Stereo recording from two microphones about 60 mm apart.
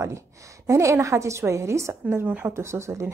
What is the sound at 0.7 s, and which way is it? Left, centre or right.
A woman's voice, right.